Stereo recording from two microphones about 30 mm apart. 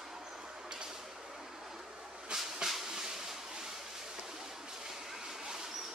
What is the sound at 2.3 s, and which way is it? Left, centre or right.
Train, centre.